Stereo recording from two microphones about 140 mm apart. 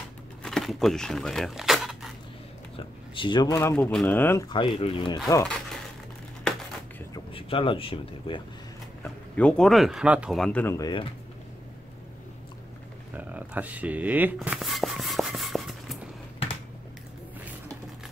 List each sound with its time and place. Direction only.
0.4 s speech: 5° left (ahead or behind)
3.2 s speech: 35° left (ahead or behind)
3.5 s a man's voice: 15° left (ahead or behind)
4.5 s speech: 40° left (ahead or behind)
7.3 s speech: 40° left (ahead or behind)
9.0 s speech: 10° left (ahead or behind); by 10.4 s 5° right (ahead or behind)
10.4 s a man's voice: 10° left (ahead or behind)
10.8 s speech: 30° left (ahead or behind)
13.1 s a sound: 10° right (ahead or behind)